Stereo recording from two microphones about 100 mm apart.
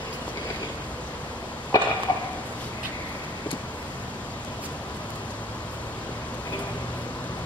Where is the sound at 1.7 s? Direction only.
35° left (ahead or behind).